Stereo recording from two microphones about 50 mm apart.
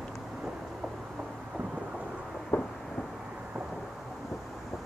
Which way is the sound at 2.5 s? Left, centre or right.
Left.